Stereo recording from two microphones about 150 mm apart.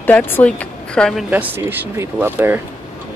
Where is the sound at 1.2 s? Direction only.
10° right (ahead or behind).